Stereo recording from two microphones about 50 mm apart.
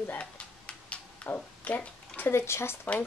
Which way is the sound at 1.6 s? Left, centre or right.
Left.